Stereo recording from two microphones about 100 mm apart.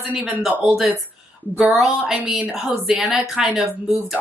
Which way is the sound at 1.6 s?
5° right (ahead or behind).